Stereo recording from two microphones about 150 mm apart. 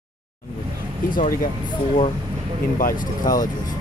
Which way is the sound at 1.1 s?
65° left (ahead or behind).